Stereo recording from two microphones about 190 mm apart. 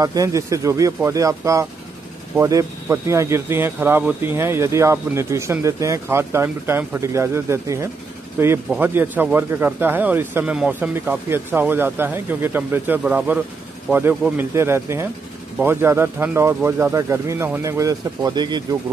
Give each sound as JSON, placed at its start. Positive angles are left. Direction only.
{"t": 0.0, "sound": "speech", "side_deg": -20}